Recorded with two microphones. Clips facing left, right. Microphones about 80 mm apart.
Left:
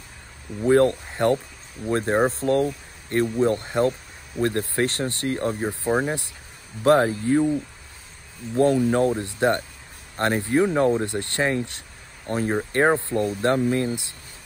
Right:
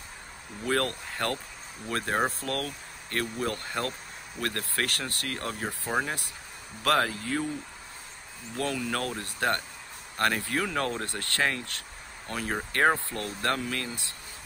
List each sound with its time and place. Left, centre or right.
0.7 s speech: left
5.6 s speech: centre
8.5 s speech: left